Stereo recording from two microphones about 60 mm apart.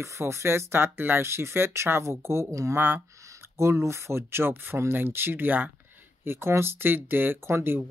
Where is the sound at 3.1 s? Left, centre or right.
Right.